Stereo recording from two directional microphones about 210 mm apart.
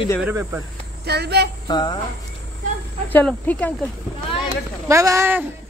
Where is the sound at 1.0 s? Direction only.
50° right (ahead or behind).